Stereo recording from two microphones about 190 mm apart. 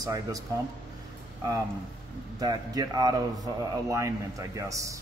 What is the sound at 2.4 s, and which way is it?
A man's voice, 20° right (ahead or behind).